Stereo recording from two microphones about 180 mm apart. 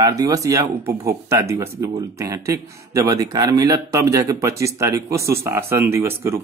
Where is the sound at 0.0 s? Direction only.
20° right (ahead or behind).